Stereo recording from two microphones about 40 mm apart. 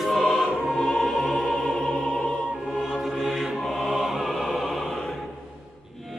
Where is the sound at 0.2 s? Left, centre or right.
Centre.